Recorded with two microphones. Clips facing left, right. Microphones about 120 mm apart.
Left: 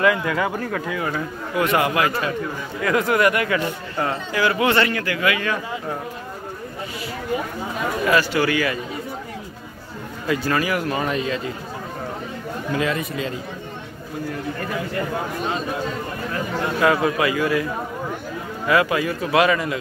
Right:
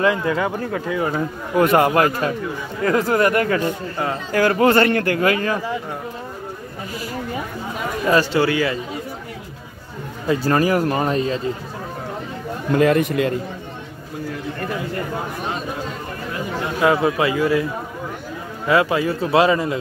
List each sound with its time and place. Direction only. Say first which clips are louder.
0.0 s a man's voice: right 1 dB; 25° right (ahead or behind)
0.7 s speech: right 3 dB; 15° right (ahead or behind)
1.0 s speech: right 3 dB; 35° right (ahead or behind)
8.1 s a man's voice: right 3 dB; 30° right (ahead or behind)
10.2 s speech: right 4 dB; 35° right (ahead or behind)
12.7 s a man's voice: right 8 dB; 55° right (ahead or behind)
16.8 s a man's voice: right 2 dB; 20° right (ahead or behind)
18.7 s a man's voice: right 2 dB; 25° right (ahead or behind)